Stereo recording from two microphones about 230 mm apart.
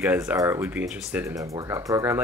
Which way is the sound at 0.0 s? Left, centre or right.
Centre.